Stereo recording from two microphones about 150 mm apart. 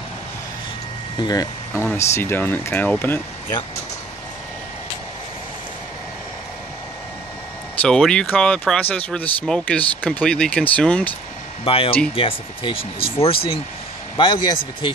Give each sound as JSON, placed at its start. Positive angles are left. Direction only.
{"t": 1.2, "sound": "speech", "side_deg": 25}
{"t": 1.7, "sound": "speech", "side_deg": 15}
{"t": 7.8, "sound": "speech", "side_deg": 5}
{"t": 11.6, "sound": "speech", "side_deg": 40}